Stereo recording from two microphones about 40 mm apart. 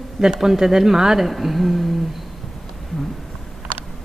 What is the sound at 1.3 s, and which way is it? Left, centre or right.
Speech, centre.